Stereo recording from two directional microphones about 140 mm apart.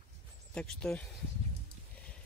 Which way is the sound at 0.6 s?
5° left (ahead or behind).